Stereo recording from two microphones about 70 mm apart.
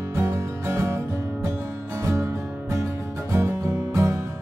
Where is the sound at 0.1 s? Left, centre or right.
Right.